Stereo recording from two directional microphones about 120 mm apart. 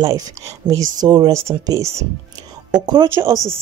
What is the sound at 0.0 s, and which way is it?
Speech, 30° right (ahead or behind).